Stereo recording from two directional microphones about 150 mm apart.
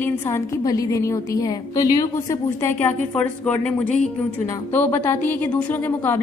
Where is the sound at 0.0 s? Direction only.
20° left (ahead or behind).